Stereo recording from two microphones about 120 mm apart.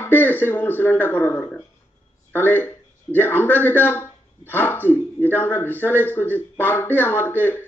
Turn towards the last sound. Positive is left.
turn(degrees=20)  # may be behind; listen again after turning